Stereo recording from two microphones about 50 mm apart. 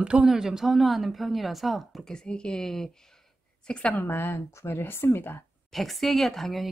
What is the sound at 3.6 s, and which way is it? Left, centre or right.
Speech, left.